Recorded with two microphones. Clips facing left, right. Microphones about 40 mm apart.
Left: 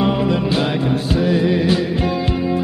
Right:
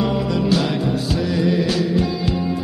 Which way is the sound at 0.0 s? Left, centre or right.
Left.